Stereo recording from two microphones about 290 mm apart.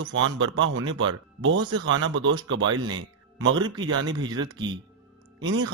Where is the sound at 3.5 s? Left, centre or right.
Centre.